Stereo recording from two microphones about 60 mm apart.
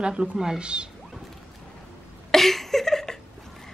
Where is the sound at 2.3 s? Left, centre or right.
Centre.